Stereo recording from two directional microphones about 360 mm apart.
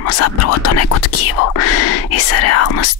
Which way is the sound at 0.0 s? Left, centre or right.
Left.